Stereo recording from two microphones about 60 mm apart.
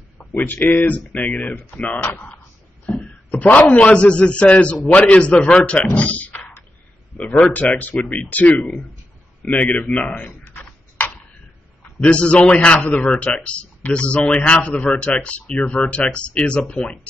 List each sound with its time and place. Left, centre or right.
0.5 s a man's voice: left
5.9 s computer keyboard: left
7.2 s a man's voice: left
10.4 s a sound: left
12.0 s a man's voice: centre